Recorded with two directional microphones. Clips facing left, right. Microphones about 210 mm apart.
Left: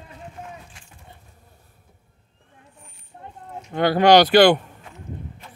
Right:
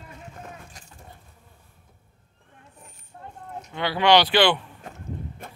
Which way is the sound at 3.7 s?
45° left (ahead or behind).